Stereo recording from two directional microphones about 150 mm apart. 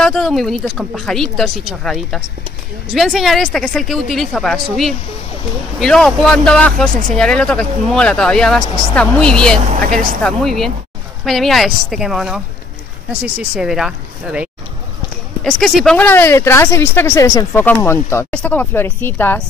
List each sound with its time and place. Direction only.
0.0 s speech: 5° left (ahead or behind)
5.8 s speech: 5° left (ahead or behind)
9.8 s speech: 65° right (ahead or behind)
10.2 s speech: centre (ahead or behind)